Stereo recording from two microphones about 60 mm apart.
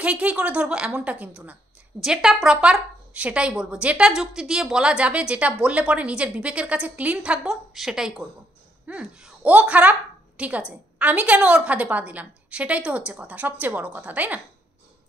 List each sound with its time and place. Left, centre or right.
0.0 s a woman's voice: right
2.0 s speech: centre
7.4 s speech: centre
8.8 s a woman's voice: right